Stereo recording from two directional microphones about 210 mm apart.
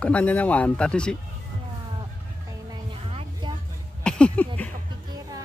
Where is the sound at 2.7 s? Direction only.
25° right (ahead or behind).